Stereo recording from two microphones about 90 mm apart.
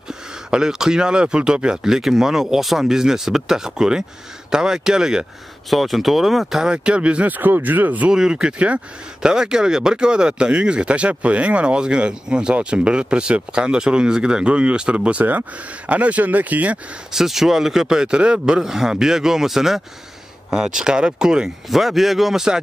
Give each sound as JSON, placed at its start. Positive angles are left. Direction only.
{"t": 0.1, "sound": "speech", "side_deg": -5}
{"t": 17.1, "sound": "speech", "side_deg": -5}